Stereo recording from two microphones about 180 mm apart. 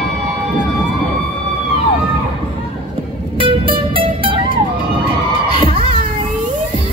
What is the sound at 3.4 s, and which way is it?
Music, 30° right (ahead or behind).